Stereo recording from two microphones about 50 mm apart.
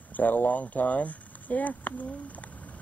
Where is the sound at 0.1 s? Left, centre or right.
Left.